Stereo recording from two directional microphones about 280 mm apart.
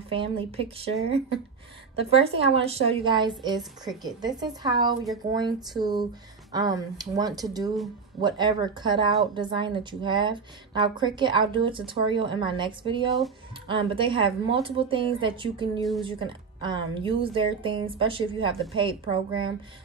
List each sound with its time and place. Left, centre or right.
0.1 s a woman's voice: centre